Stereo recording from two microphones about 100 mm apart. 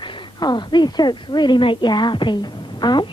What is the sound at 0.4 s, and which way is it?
A woman's voice, 45° left (ahead or behind).